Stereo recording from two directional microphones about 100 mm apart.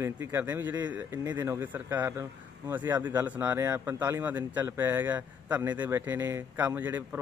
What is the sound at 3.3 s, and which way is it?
Speech, 20° right (ahead or behind).